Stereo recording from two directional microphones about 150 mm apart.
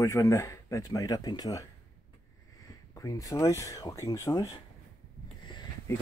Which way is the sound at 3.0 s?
25° left (ahead or behind).